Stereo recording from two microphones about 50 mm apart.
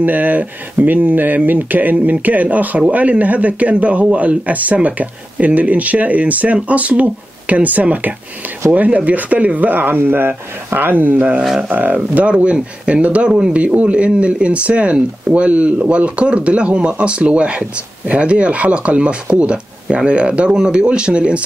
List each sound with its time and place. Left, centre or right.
0.0 s speech: right